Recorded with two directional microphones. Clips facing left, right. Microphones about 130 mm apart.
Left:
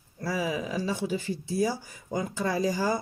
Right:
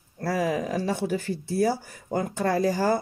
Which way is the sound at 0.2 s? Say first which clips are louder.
Right 4 dB; 60° right (ahead or behind).